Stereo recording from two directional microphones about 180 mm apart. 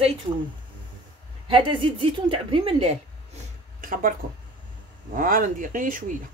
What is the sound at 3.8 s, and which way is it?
Speech, 50° right (ahead or behind).